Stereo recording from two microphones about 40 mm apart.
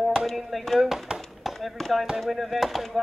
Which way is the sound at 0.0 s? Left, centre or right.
Centre.